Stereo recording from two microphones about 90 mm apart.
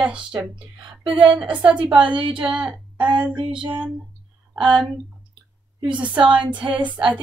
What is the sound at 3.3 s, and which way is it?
Speech, 65° right (ahead or behind).